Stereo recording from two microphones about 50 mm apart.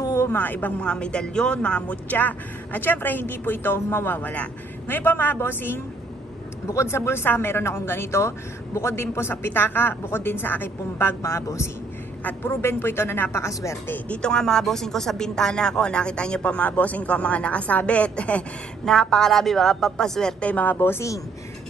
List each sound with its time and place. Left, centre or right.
0.3 s speech: left
0.8 s speech: centre
4.8 s a woman's voice: left
6.7 s a woman's voice: left
7.0 s a woman's voice: left
11.2 s a woman's voice: left
12.4 s a woman's voice: left
13.3 s a woman's voice: left
14.0 s a woman's voice: left
18.9 s a woman's voice: centre
20.3 s speech: left